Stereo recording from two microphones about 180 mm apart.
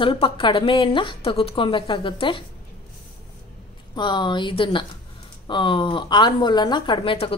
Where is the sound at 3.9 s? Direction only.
25° left (ahead or behind).